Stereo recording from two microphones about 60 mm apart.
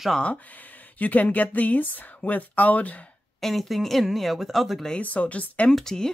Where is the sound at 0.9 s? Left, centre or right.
Left.